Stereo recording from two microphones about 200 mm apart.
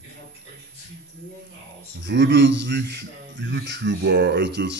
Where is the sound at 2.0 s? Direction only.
60° right (ahead or behind).